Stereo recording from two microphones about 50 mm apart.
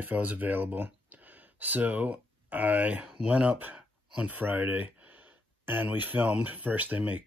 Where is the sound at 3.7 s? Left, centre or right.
Right.